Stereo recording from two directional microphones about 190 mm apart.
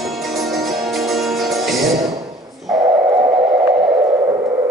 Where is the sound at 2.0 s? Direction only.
20° right (ahead or behind).